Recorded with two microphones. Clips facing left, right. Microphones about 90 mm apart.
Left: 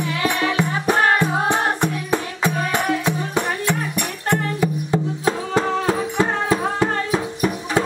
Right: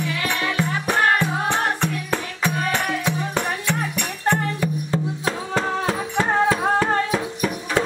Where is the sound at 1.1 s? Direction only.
15° left (ahead or behind).